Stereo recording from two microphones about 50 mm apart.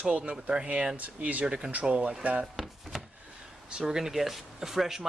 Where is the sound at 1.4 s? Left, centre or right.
Centre.